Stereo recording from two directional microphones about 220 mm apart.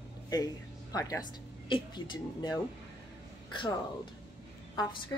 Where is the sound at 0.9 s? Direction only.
15° left (ahead or behind).